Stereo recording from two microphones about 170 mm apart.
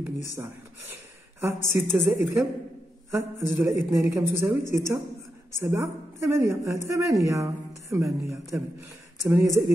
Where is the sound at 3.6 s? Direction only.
20° right (ahead or behind).